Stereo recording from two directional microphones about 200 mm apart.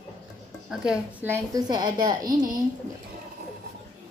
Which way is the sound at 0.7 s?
5° right (ahead or behind).